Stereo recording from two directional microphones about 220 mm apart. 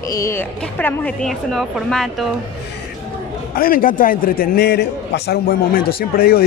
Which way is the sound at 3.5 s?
40° left (ahead or behind).